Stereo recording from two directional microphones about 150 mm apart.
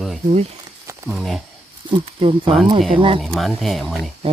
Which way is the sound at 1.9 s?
35° right (ahead or behind).